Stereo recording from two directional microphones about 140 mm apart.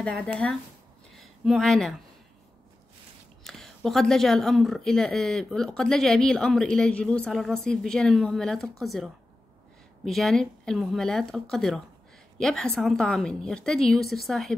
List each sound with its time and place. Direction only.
0.0 s speech: 5° left (ahead or behind)
1.1 s a sound: centre (ahead or behind)
3.4 s speech: 5° left (ahead or behind)